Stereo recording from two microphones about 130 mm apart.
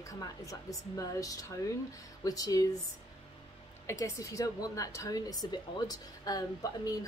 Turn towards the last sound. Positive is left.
turn(degrees=30)  # may be behind; listen again after turning